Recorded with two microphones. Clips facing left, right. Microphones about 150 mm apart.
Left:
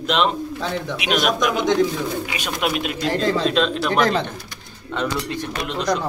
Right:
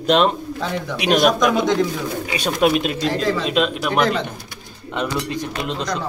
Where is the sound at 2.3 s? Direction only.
35° right (ahead or behind).